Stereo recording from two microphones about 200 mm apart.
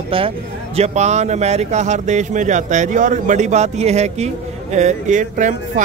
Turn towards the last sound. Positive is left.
turn(degrees=-40)  # may be behind; listen again after turning